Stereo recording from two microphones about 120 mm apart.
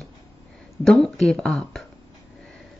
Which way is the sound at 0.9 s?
5° left (ahead or behind).